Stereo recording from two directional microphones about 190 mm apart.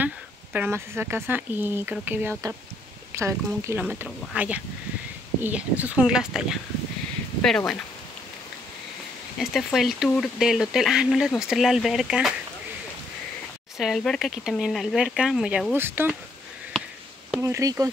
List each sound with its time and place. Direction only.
0.0 s speech: 10° right (ahead or behind)
9.4 s speech: centre (ahead or behind)
13.7 s speech: centre (ahead or behind)
17.4 s speech: 15° right (ahead or behind)